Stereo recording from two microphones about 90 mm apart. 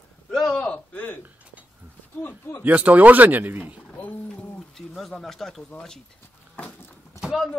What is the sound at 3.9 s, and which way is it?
Speech, 20° left (ahead or behind).